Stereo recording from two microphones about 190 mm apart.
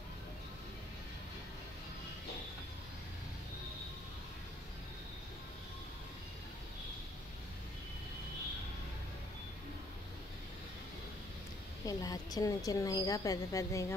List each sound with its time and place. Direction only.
11.8 s a woman's voice: 20° left (ahead or behind)